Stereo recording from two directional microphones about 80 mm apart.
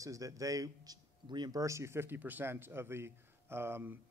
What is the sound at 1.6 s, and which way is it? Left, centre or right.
Speech, right.